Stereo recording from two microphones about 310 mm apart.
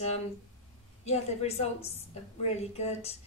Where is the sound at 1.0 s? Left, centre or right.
Left.